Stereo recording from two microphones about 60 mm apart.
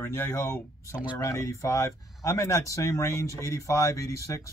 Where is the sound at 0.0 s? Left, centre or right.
Left.